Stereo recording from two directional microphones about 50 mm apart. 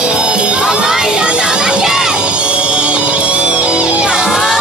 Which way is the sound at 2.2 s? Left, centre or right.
Right.